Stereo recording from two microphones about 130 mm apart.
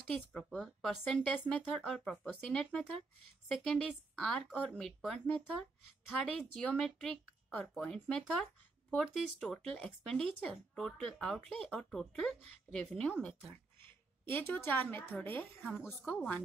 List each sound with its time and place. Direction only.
0.1 s speech: 5° left (ahead or behind)
14.3 s a woman's voice: 15° left (ahead or behind)